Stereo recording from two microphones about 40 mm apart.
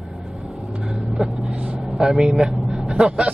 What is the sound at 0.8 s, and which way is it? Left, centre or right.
Speech, centre.